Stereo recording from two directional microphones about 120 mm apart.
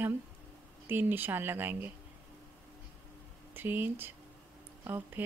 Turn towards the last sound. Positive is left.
turn(degrees=-20)  # may be behind; listen again after turning